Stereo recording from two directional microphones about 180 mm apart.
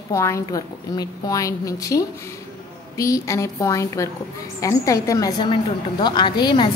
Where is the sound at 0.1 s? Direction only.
15° left (ahead or behind).